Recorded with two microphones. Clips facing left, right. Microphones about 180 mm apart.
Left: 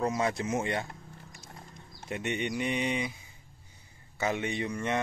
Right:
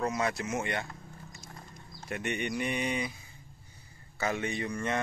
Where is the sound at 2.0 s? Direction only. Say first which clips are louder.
Left 1 dB; 20° left (ahead or behind).